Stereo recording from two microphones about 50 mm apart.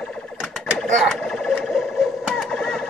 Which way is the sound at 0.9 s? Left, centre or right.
Centre.